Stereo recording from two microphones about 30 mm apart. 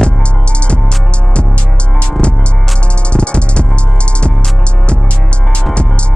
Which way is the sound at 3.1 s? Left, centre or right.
Left.